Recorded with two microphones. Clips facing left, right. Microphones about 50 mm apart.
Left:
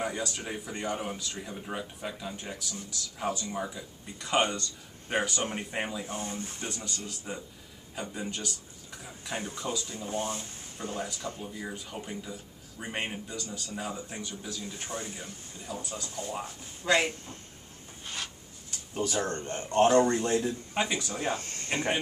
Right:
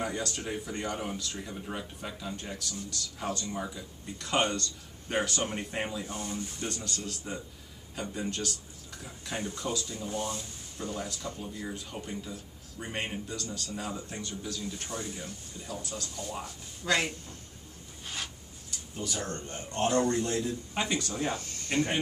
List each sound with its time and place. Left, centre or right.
0.0 s speech: centre
6.0 s speech: left
6.7 s speech: centre; by 10.4 s left
10.8 s speech: centre
11.1 s speech: left
11.4 s speech: centre
14.7 s speech: left
15.1 s speech: centre
18.0 s a sound: centre
19.1 s speech: left